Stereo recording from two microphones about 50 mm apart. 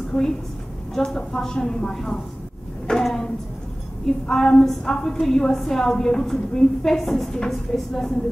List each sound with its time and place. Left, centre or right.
0.1 s a woman's voice: centre
2.9 s a sound: centre
4.0 s a woman's voice: centre